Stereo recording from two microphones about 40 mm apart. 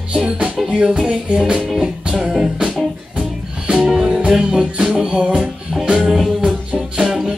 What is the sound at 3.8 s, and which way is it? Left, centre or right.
Music, centre.